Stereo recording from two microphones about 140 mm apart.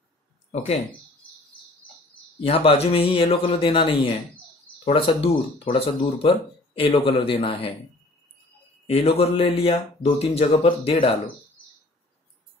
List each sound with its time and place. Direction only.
2.4 s speech: 40° left (ahead or behind)
8.8 s speech: 45° left (ahead or behind)